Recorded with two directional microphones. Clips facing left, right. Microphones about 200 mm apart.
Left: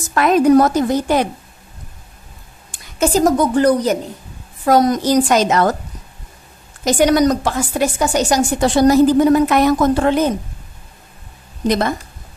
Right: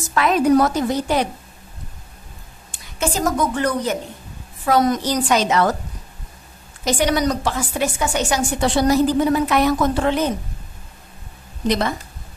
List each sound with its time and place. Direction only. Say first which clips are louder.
0.1 s a woman's voice: left 4 dB; 45° left (ahead or behind)
2.7 s a woman's voice: left 7 dB; 40° left (ahead or behind)
6.8 s a woman's voice: left 6 dB; 45° left (ahead or behind)
11.6 s a woman's voice: left 3 dB; 50° left (ahead or behind)